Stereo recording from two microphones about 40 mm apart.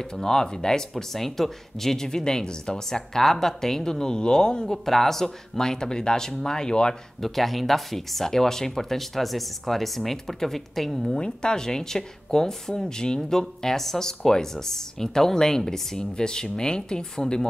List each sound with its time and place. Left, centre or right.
0.0 s speech: centre
7.2 s speech: centre
11.1 s speech: left